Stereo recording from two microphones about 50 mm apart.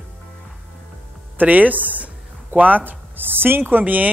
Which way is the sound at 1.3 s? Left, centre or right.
Right.